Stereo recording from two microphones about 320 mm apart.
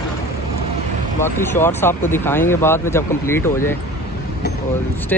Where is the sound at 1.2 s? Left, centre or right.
Centre.